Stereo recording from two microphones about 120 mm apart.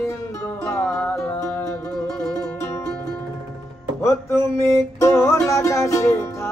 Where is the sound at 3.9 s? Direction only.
20° left (ahead or behind).